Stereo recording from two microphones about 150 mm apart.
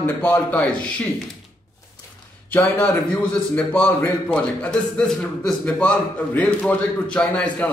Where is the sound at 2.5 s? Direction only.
5° left (ahead or behind).